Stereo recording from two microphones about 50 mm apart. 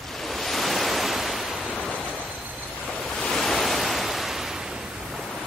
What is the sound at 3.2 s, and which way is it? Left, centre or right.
Waves, centre.